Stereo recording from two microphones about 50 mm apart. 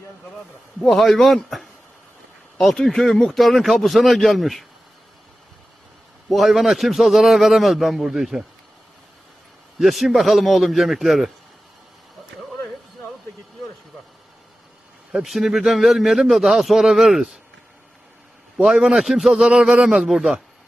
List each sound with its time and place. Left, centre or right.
0.8 s a man's voice: centre
6.2 s a man's voice: centre
9.8 s a man's voice: centre
15.1 s a man's voice: centre
18.6 s a man's voice: centre
19.3 s a man's voice: centre